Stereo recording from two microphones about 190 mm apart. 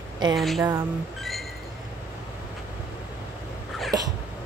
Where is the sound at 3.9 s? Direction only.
20° right (ahead or behind).